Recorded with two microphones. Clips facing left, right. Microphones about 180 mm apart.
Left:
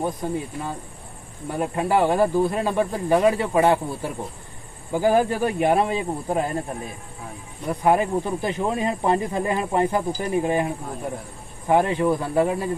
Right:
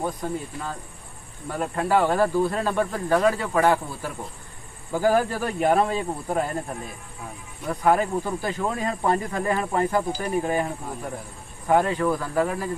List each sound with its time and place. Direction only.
0.0 s speech: 15° left (ahead or behind)
7.6 s speech: 20° left (ahead or behind)